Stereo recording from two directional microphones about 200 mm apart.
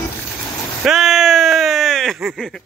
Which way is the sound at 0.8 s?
Centre (ahead or behind).